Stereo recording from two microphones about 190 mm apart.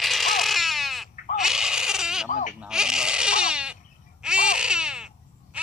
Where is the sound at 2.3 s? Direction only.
40° left (ahead or behind).